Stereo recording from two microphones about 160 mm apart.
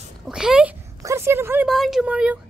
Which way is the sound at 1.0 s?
20° right (ahead or behind).